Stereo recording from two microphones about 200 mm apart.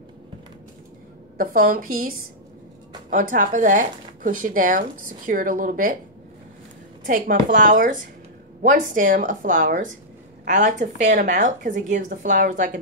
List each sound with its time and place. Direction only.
1.4 s speech: 45° right (ahead or behind)
7.1 s speech: 45° right (ahead or behind)